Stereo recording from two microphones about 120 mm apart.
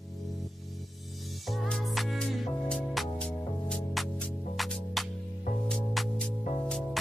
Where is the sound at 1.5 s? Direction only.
Centre (ahead or behind).